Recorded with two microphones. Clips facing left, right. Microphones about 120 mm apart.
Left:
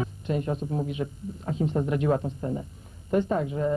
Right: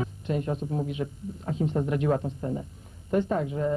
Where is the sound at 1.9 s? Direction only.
25° left (ahead or behind).